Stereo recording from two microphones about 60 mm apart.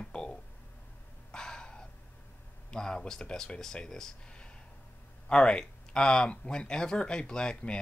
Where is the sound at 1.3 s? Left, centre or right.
Centre.